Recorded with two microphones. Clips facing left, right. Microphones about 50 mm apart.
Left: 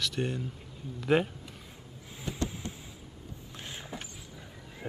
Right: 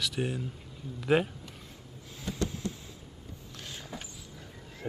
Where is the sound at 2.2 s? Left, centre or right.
Left.